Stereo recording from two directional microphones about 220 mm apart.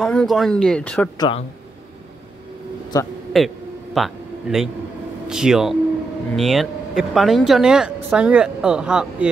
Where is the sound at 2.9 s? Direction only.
15° left (ahead or behind).